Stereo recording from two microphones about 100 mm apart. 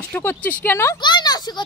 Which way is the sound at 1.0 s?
50° left (ahead or behind).